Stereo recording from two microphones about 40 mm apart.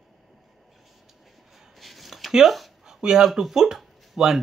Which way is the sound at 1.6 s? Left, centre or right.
Centre.